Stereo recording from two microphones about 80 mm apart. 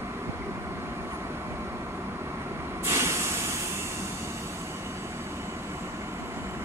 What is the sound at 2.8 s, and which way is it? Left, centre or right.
Vehicle, right.